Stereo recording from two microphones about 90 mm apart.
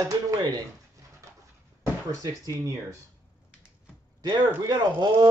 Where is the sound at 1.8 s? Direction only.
40° right (ahead or behind).